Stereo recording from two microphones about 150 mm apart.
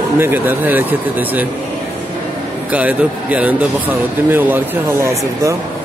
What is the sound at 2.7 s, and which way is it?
A man's voice, 10° right (ahead or behind).